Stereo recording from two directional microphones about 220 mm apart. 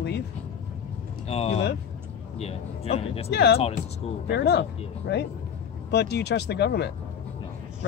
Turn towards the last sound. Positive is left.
turn(degrees=50)  # may be behind; listen again after turning